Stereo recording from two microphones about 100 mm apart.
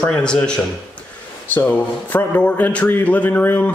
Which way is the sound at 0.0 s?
10° left (ahead or behind).